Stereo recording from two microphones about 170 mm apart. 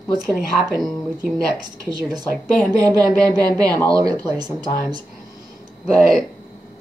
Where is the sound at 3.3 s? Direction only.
20° right (ahead or behind).